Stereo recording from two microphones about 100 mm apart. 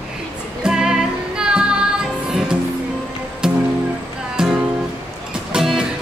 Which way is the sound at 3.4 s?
10° right (ahead or behind).